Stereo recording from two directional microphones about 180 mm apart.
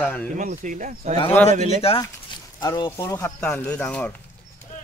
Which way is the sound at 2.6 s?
20° left (ahead or behind).